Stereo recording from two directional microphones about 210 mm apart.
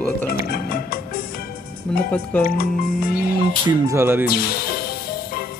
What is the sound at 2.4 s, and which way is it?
Speech, 45° left (ahead or behind).